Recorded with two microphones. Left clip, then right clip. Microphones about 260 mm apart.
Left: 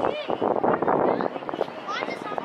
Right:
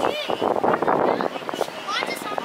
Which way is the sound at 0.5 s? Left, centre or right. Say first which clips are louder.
Right 2 dB; left.